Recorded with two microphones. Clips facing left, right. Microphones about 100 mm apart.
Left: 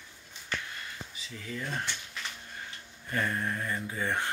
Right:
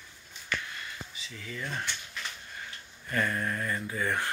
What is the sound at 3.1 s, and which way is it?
Speech, 20° left (ahead or behind).